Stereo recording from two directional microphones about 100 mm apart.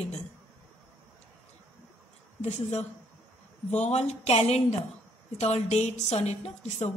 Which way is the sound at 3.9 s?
90° left.